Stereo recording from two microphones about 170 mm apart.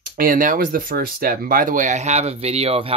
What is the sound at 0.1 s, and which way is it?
Speech, 55° right (ahead or behind).